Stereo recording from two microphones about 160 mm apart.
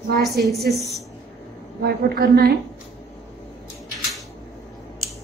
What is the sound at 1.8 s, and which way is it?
Speech, 75° right (ahead or behind).